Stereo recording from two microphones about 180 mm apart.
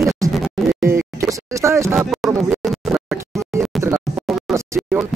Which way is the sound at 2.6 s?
Centre (ahead or behind).